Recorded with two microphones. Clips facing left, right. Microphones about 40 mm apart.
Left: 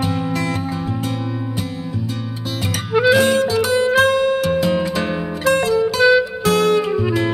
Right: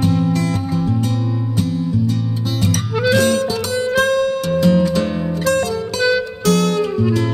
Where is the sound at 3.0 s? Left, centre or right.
Centre.